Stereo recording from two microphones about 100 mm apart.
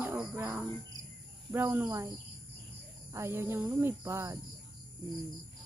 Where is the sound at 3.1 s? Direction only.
25° right (ahead or behind).